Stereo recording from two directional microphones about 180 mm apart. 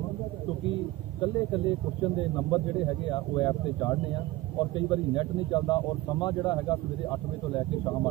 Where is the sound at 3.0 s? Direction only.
25° left (ahead or behind).